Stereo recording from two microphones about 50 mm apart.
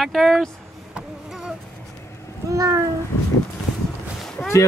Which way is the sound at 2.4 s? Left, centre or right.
Right.